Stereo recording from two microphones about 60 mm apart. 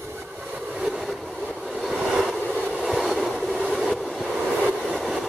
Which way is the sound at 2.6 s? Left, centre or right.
Centre.